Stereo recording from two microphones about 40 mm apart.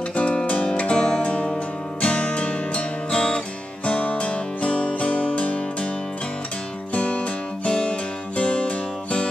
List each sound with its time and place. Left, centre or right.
0.1 s music: left
6.9 s music: left